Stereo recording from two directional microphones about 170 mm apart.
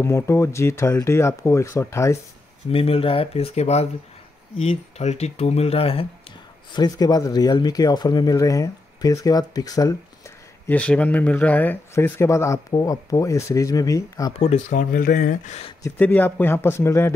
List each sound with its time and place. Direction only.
0.0 s speech: 15° left (ahead or behind)
2.7 s speech: 35° left (ahead or behind)
6.7 s speech: 25° left (ahead or behind)
10.7 s speech: 10° left (ahead or behind)
14.4 s speech: 45° left (ahead or behind)
15.8 s speech: 10° left (ahead or behind)